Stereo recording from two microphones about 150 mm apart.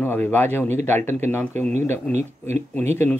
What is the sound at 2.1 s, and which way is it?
Speech, 50° right (ahead or behind).